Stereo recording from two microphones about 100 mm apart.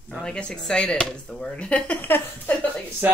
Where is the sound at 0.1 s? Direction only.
10° left (ahead or behind).